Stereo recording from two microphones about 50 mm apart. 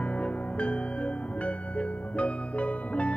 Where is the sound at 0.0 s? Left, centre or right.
Left.